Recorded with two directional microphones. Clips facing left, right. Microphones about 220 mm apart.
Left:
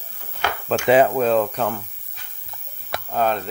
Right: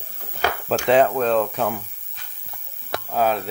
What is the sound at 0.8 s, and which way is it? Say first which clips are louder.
Speech: left 2 dB; 5° left (ahead or behind).